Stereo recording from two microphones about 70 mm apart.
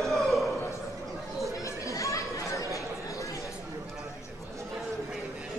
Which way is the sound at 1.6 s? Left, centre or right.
Left.